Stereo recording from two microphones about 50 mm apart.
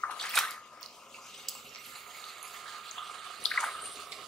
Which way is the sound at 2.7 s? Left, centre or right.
Centre.